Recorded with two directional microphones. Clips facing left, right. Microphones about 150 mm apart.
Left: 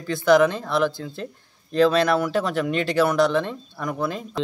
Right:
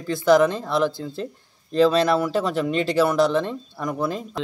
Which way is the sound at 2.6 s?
30° right (ahead or behind).